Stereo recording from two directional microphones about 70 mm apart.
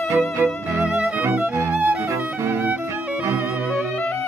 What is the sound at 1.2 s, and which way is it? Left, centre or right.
Music, right.